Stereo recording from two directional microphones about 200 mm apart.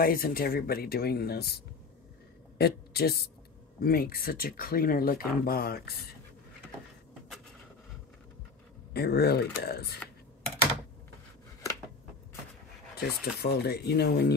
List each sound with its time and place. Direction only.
0.0 s speech: 45° left (ahead or behind)
8.9 s speech: 50° left (ahead or behind)
12.9 s speech: 50° left (ahead or behind)